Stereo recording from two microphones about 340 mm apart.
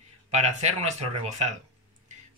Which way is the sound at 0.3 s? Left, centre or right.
Centre.